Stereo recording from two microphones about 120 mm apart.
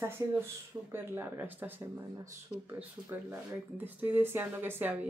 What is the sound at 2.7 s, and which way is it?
Speech, 15° right (ahead or behind).